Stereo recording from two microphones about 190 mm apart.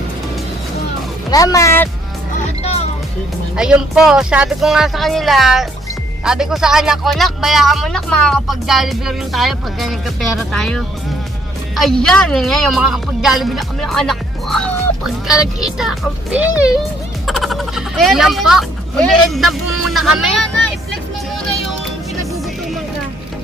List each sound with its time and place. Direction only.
1.3 s speech: 20° left (ahead or behind)
2.6 s music: 35° left (ahead or behind)
3.5 s speech: 5° right (ahead or behind)